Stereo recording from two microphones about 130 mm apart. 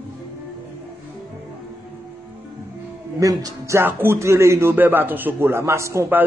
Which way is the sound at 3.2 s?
30° right (ahead or behind).